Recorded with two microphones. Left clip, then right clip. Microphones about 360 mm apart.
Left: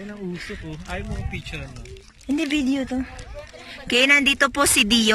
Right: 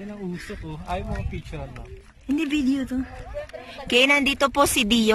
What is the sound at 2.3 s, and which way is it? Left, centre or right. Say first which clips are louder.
Speech: left 1 dB; centre.